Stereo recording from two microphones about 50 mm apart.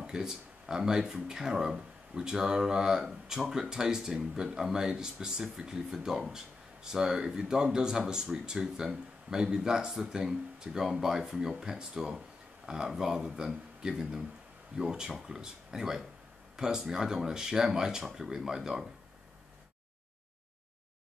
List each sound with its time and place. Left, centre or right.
0.0 s speech: centre